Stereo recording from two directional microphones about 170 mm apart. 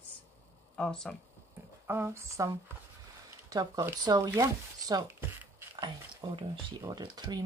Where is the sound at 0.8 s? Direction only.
5° left (ahead or behind).